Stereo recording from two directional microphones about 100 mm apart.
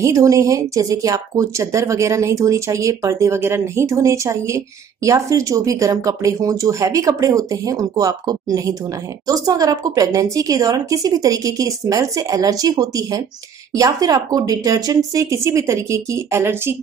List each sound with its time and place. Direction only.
0.0 s speech: 35° right (ahead or behind)